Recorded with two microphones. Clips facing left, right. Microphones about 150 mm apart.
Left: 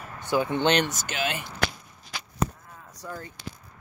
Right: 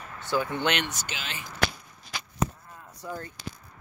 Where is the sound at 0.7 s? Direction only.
45° left (ahead or behind).